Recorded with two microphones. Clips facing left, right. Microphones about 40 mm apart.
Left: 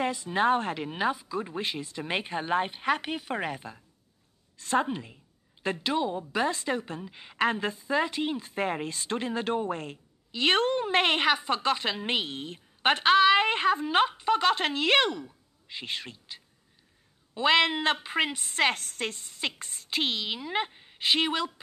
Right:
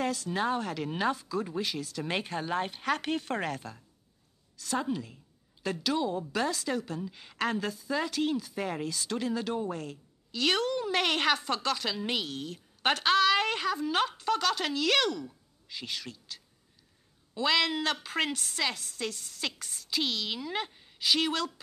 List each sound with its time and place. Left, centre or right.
0.0 s a woman's voice: left
0.8 s a woman's voice: centre
4.6 s a woman's voice: left
11.2 s a woman's voice: centre
18.5 s a woman's voice: left